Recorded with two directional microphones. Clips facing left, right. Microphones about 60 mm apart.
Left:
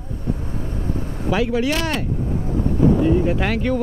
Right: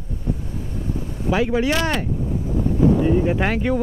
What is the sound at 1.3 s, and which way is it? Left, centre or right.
Speech, right.